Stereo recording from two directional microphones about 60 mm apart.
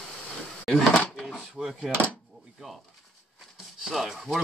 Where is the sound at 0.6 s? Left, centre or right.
Centre.